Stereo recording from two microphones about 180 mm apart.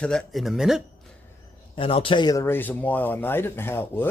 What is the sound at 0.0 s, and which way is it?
Speech, centre (ahead or behind).